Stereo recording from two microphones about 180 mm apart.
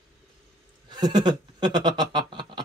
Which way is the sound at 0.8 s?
25° right (ahead or behind).